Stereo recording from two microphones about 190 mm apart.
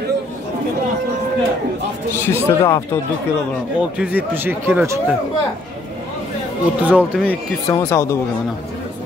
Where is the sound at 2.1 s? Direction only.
15° left (ahead or behind).